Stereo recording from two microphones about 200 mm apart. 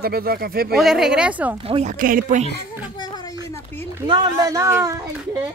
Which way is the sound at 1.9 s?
45° right (ahead or behind).